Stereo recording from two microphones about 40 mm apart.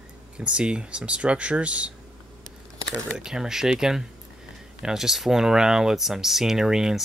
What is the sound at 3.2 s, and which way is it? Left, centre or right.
Speech, centre.